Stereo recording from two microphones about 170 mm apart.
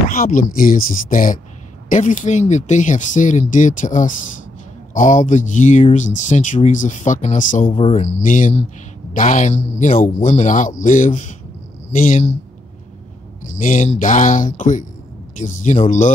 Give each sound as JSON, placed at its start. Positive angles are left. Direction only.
{"t": 0.1, "sound": "speech", "side_deg": 55}
{"t": 13.6, "sound": "speech", "side_deg": 50}